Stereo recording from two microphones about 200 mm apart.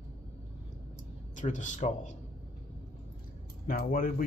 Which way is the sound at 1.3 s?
40° left (ahead or behind).